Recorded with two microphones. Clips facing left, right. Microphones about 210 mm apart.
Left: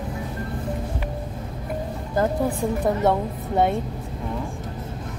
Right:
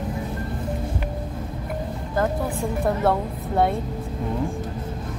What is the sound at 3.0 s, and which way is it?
Speech, 20° left (ahead or behind).